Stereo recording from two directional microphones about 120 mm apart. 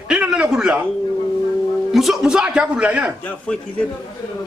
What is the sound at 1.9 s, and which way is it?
Speech, centre (ahead or behind).